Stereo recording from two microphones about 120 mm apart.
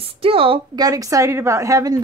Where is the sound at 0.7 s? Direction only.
30° right (ahead or behind).